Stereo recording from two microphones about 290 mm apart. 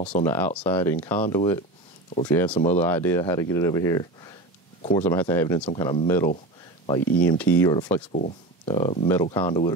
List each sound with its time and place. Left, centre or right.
0.1 s speech: centre